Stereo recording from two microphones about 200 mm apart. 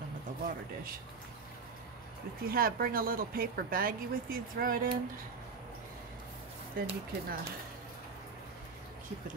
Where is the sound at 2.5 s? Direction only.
45° right (ahead or behind).